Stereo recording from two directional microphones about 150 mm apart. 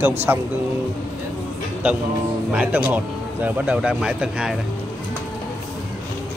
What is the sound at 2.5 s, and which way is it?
Speech, 10° right (ahead or behind).